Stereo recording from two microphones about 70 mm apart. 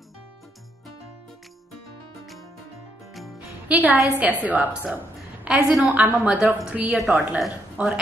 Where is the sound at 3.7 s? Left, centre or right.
Right.